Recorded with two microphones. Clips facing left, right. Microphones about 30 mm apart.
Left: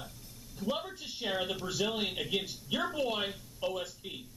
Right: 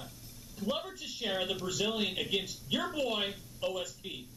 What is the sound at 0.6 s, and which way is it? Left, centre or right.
A man's voice, centre.